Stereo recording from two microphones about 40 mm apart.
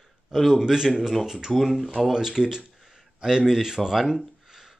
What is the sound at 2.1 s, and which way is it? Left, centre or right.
Speech, centre.